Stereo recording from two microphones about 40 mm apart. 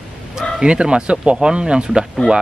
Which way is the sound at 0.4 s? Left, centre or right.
Right.